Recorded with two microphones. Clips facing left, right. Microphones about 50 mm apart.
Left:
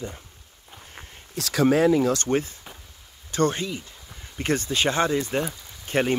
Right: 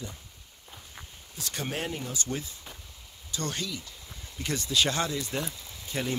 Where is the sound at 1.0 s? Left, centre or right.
Left.